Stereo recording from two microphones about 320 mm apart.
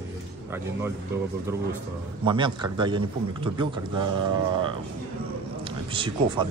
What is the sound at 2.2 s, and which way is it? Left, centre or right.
A man's voice, centre.